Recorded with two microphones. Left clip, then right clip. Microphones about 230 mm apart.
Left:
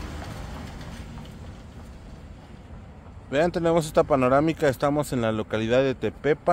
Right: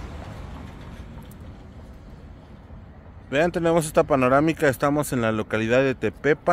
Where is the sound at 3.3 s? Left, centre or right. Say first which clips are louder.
Right 1 dB; centre.